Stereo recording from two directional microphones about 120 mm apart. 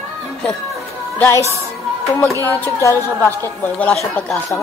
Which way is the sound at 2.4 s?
20° left (ahead or behind).